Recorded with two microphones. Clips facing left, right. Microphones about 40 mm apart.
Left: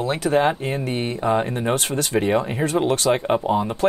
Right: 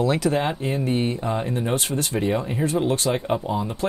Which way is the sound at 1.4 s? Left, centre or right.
Left.